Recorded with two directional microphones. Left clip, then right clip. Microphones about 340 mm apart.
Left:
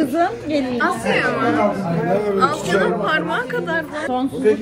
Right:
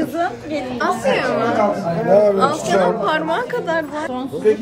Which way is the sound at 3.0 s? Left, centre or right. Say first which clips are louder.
Right 1 dB; right.